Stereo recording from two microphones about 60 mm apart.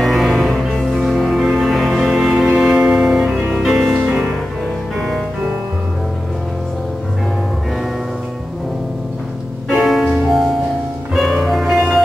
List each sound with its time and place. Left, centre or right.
0.0 s music: centre
0.9 s music: centre
9.7 s music: centre
10.0 s music: centre
11.4 s music: centre